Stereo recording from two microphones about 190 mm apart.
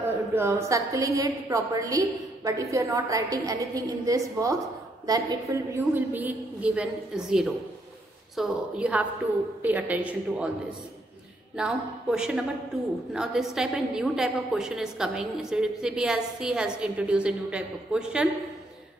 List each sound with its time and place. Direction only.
0.3 s a woman's voice: 15° right (ahead or behind)
11.5 s a woman's voice: centre (ahead or behind)